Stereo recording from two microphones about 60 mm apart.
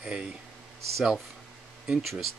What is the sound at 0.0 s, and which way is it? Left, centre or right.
Speech, centre.